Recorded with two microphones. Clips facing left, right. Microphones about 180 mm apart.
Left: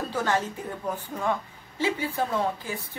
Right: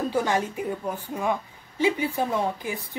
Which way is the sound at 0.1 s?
15° right (ahead or behind).